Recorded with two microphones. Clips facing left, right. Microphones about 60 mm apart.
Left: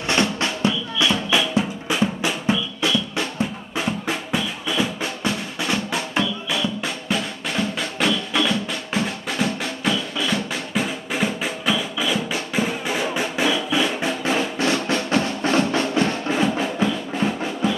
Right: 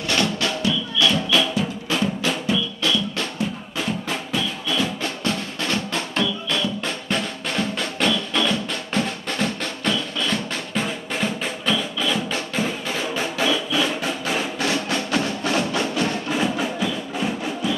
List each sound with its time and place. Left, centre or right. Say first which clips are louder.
0.1 s music: left 1 dB; left
4.3 s music: even; centre; by 17.8 s left